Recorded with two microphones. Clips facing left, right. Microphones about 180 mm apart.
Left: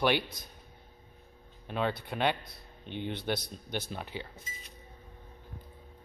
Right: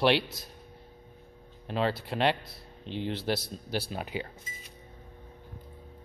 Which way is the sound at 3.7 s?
10° right (ahead or behind).